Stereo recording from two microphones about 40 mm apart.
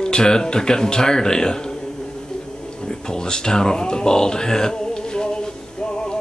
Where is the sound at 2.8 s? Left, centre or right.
Centre.